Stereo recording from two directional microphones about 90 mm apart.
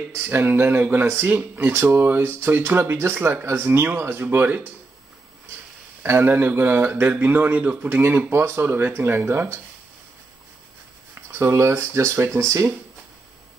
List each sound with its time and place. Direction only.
0.3 s speech: 25° right (ahead or behind)
6.0 s speech: 30° right (ahead or behind)
11.3 s speech: 30° right (ahead or behind)